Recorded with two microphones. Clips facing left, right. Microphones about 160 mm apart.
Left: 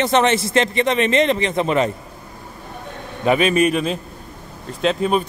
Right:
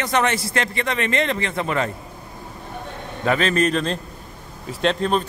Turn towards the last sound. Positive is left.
turn(degrees=5)  # may be behind; listen again after turning